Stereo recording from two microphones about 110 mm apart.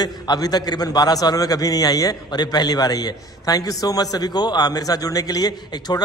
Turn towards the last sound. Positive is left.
turn(degrees=35)  # may be behind; listen again after turning